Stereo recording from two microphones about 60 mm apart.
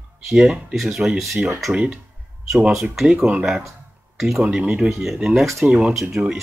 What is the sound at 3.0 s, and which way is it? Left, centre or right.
Speech, centre.